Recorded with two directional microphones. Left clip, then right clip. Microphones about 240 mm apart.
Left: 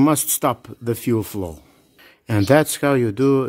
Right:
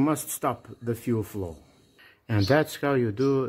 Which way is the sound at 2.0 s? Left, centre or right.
Left.